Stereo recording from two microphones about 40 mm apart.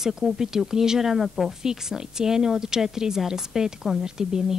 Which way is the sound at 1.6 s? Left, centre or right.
Centre.